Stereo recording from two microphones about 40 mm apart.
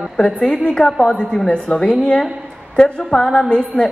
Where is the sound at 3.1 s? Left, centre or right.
Centre.